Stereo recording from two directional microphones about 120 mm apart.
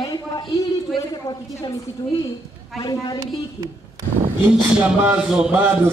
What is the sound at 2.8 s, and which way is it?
Speech, 30° left (ahead or behind).